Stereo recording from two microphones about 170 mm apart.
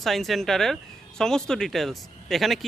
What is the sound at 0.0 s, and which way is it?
Speech, centre (ahead or behind).